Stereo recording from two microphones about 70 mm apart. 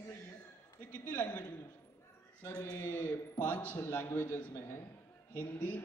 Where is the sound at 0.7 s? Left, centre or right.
Left.